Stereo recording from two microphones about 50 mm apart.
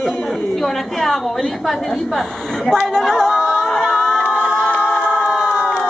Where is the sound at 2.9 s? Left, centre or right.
Centre.